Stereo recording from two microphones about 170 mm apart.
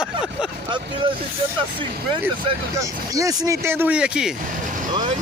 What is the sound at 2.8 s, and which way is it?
Speech, 20° right (ahead or behind).